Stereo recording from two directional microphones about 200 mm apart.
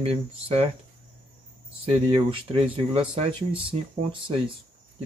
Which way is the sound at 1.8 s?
30° right (ahead or behind).